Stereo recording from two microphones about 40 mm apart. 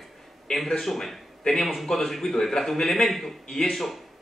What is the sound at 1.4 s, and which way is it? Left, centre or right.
A man's voice, centre.